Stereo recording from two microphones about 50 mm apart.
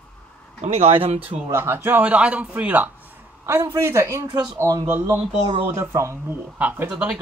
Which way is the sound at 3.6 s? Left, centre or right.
Right.